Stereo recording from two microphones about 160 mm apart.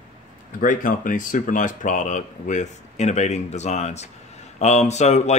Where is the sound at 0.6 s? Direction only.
60° left (ahead or behind).